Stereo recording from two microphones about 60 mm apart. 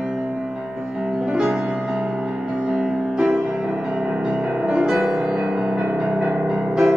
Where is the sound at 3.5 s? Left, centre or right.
Centre.